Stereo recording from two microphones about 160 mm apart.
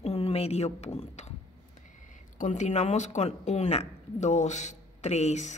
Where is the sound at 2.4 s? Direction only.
50° left (ahead or behind).